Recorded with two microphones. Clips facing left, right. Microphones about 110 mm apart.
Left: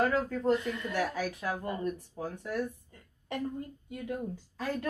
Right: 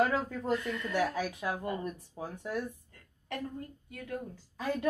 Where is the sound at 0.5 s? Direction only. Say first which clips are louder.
Left 3 dB; 20° left (ahead or behind).